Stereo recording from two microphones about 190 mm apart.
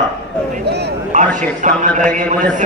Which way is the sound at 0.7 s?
60° right (ahead or behind).